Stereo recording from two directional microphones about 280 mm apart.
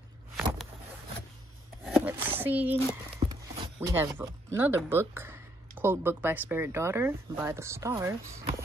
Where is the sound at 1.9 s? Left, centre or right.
Centre.